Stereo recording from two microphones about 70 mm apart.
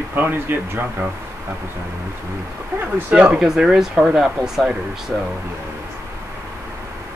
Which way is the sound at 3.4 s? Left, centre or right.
Centre.